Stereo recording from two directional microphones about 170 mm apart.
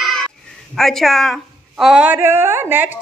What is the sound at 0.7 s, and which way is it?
A woman's voice, centre (ahead or behind).